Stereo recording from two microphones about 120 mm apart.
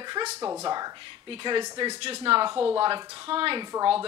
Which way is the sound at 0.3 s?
30° right (ahead or behind).